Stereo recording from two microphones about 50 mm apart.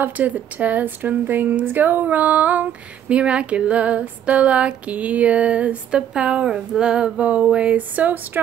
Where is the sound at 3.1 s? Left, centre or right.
Right.